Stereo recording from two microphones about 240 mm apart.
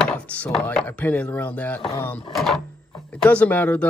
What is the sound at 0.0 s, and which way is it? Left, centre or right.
Speech, centre.